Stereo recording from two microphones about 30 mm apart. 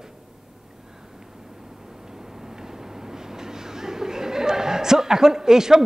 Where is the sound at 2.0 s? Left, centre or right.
Centre.